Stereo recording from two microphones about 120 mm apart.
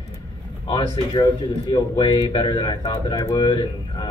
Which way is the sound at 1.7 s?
40° left (ahead or behind).